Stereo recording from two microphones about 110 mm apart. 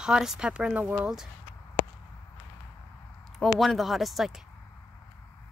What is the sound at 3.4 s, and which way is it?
Speech, centre (ahead or behind).